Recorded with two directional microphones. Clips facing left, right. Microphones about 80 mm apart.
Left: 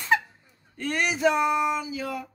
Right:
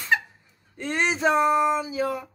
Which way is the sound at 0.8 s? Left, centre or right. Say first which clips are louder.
Right 1 dB; right.